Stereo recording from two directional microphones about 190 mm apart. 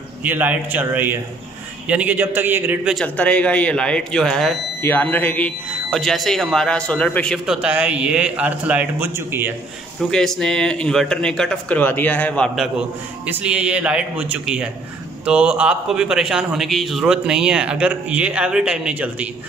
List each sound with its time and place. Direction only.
0.2 s a man's voice: 10° right (ahead or behind)
9.9 s a man's voice: centre (ahead or behind)
13.3 s a man's voice: 5° right (ahead or behind)